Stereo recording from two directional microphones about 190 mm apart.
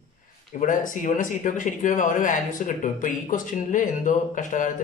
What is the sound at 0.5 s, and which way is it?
Speech, 45° left (ahead or behind).